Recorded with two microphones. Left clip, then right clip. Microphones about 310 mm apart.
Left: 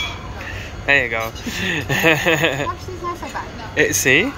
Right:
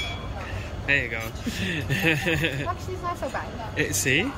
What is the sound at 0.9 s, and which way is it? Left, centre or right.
Speech, centre.